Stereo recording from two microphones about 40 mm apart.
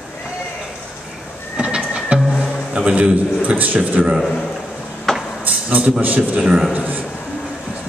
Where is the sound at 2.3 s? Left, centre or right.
Right.